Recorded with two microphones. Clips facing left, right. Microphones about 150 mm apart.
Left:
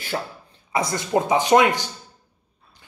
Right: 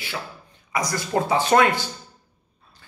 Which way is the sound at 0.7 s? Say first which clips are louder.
Left 2 dB; 25° left (ahead or behind).